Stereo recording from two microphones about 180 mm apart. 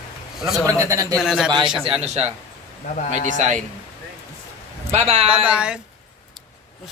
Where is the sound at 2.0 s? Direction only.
35° right (ahead or behind).